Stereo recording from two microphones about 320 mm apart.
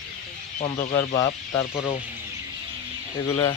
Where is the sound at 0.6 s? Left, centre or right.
Left.